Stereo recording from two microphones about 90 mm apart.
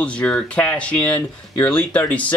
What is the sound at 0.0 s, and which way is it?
Speech, 10° left (ahead or behind).